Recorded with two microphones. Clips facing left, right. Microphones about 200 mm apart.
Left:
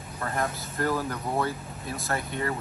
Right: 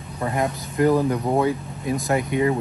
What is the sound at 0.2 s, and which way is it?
Speech, 15° right (ahead or behind).